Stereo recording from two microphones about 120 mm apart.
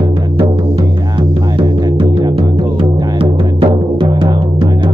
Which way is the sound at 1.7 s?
35° right (ahead or behind).